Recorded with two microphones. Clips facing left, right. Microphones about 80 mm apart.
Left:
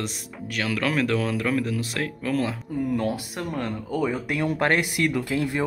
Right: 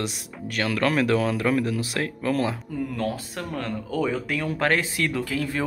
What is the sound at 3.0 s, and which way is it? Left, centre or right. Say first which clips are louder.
Speech: left 1 dB; centre.